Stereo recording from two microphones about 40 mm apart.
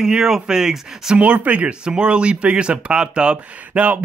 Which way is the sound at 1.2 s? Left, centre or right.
Right.